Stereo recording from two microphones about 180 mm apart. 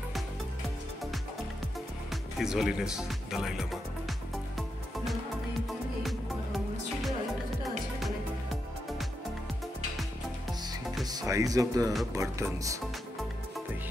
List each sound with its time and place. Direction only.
2.3 s speech: centre (ahead or behind)
5.7 s music: centre (ahead or behind)
11.1 s speech: 20° right (ahead or behind)